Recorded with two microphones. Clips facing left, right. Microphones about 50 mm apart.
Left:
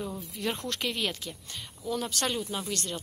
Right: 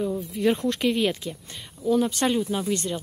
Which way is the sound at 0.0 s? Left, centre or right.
Centre.